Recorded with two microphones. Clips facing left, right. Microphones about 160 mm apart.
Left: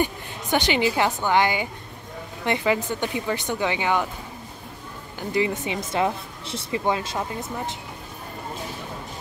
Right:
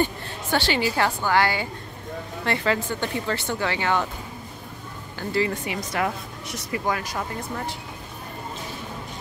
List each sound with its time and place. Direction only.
0.0 s a woman's voice: 15° left (ahead or behind)
5.2 s speech: 20° left (ahead or behind)